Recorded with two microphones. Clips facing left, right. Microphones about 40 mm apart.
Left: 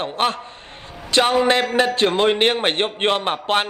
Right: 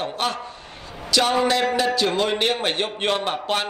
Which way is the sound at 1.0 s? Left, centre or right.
Left.